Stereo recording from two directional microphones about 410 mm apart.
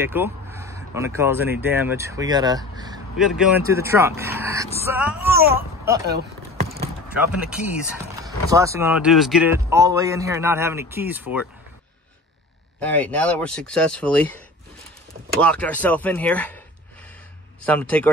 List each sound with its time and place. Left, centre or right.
0.0 s speech: centre
6.0 s a sound: right
8.2 s speech: centre
12.8 s speech: centre
15.3 s speech: centre
17.6 s speech: centre